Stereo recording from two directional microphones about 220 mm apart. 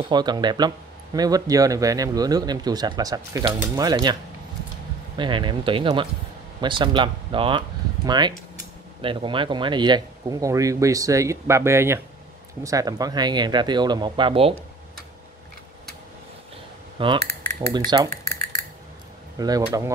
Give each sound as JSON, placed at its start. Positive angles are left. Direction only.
{"t": 0.1, "sound": "speech", "side_deg": -20}
{"t": 17.0, "sound": "cutlery", "side_deg": -25}
{"t": 19.3, "sound": "speech", "side_deg": -15}